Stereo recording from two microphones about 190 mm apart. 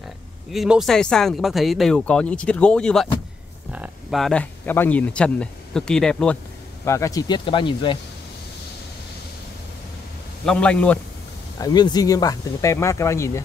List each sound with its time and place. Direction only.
0.5 s speech: centre (ahead or behind)
6.8 s speech: 15° left (ahead or behind)
10.4 s speech: 5° left (ahead or behind)
11.5 s speech: 20° left (ahead or behind)